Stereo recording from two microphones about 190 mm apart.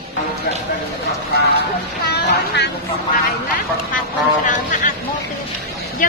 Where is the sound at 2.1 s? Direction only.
60° left (ahead or behind).